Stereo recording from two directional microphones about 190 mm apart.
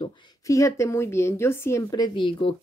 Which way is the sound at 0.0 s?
25° left (ahead or behind).